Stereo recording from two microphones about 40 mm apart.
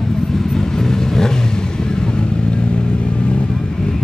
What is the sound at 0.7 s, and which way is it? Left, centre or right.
Vehicle, centre.